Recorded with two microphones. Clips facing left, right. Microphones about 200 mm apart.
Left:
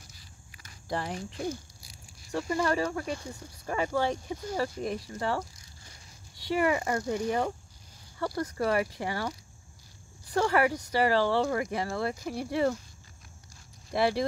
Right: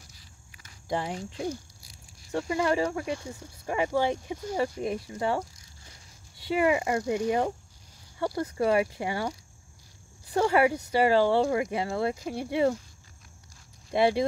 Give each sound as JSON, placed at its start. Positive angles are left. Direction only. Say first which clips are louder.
{"t": 0.8, "sound": "speech", "louder": "right 2 dB", "side_deg": -15}
{"t": 6.5, "sound": "speech", "louder": "right 2 dB", "side_deg": -20}
{"t": 10.3, "sound": "speech", "louder": "right 3 dB", "side_deg": -20}
{"t": 13.9, "sound": "speech", "louder": "right 3 dB", "side_deg": -20}